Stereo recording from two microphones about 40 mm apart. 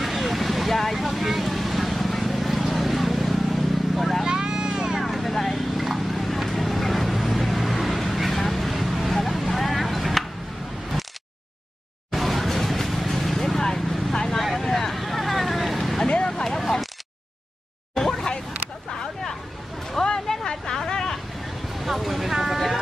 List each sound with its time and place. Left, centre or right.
0.0 s vehicle: centre
4.2 s vehicle: centre
5.0 s vehicle: centre
12.1 s music: centre
13.6 s vehicle: centre
14.3 s vehicle: centre
17.9 s a sound: centre
20.1 s a sound: centre
21.7 s a sound: centre